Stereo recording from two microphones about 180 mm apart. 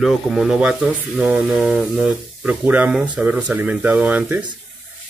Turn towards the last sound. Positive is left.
turn(degrees=-5)  # may be behind; listen again after turning